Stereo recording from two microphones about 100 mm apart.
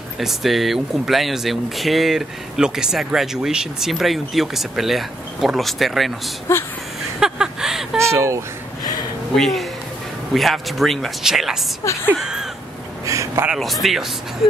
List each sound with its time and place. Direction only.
0.2 s speech: centre (ahead or behind)
6.5 s speech: 25° left (ahead or behind)
7.2 s a sound: 5° right (ahead or behind)
8.0 s speech: 30° right (ahead or behind)
9.3 s speech: 5° left (ahead or behind)
11.8 s speech: 30° left (ahead or behind)
12.2 s speech: 5° right (ahead or behind)
13.0 s speech: 30° right (ahead or behind)
13.5 s speech: centre (ahead or behind)